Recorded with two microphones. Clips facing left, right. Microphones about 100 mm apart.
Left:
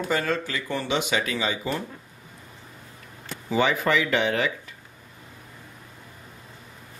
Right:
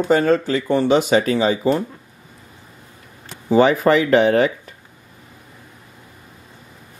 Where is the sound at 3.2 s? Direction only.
40° right (ahead or behind).